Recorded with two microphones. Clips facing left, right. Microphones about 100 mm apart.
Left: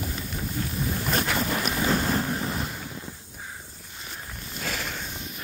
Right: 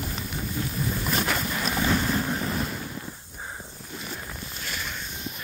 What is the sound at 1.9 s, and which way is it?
Boat, 35° left (ahead or behind).